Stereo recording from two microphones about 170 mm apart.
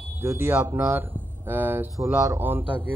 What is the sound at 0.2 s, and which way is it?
A man's voice, 15° right (ahead or behind).